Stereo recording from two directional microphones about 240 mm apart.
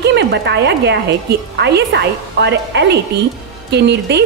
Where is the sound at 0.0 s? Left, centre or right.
Right.